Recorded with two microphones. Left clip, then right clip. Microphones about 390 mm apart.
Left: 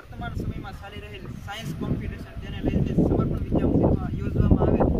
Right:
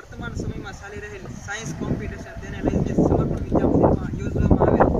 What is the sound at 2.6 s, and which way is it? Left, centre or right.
Speech, right.